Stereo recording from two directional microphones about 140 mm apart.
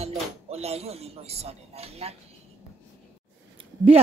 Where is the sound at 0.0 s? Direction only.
50° right (ahead or behind).